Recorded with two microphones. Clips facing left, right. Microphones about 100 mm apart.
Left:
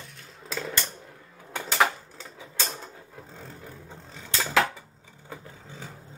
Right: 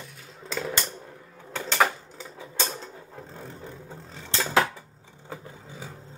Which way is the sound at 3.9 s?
Centre (ahead or behind).